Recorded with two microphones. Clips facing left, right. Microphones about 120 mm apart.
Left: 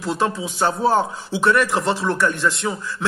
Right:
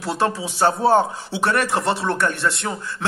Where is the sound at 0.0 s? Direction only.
35° right (ahead or behind).